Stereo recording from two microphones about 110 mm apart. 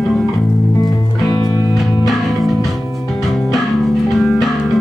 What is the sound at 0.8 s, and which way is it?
Music, 35° left (ahead or behind).